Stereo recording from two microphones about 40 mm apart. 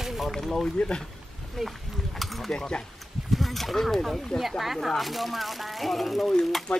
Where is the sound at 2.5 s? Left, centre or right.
Centre.